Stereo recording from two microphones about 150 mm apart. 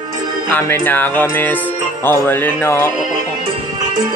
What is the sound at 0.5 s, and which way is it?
Music, 15° left (ahead or behind).